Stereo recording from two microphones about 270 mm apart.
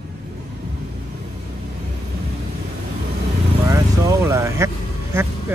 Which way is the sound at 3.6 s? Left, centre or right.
Centre.